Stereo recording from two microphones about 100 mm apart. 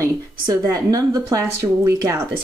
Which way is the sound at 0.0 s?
40° right (ahead or behind).